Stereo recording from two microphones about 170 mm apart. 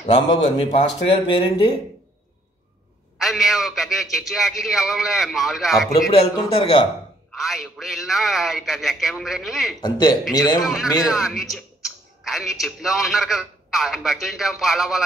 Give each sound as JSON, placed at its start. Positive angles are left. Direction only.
{"t": 0.6, "sound": "speech", "side_deg": 30}
{"t": 3.2, "sound": "a man's voice", "side_deg": 0}
{"t": 6.1, "sound": "speech", "side_deg": 35}
{"t": 7.3, "sound": "a man's voice", "side_deg": 0}
{"t": 9.8, "sound": "speech", "side_deg": 25}
{"t": 10.6, "sound": "a man's voice", "side_deg": 0}